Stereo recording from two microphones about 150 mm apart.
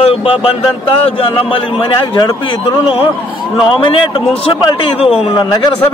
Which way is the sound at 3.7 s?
35° left (ahead or behind).